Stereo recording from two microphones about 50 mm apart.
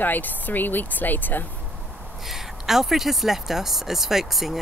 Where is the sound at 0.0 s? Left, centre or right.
Left.